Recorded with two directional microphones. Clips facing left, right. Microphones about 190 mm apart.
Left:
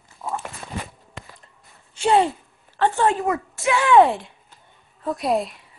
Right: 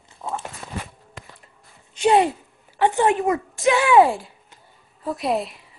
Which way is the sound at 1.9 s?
15° right (ahead or behind).